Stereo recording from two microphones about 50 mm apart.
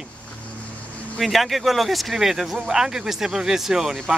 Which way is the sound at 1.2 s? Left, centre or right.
Centre.